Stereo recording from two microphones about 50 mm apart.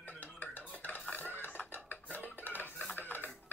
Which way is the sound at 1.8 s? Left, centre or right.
Left.